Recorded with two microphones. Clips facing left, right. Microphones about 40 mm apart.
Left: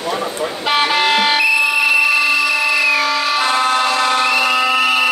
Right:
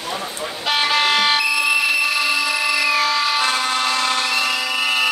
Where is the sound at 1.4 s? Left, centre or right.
Centre.